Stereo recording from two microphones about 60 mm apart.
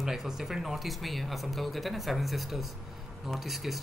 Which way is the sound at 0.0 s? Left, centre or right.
Centre.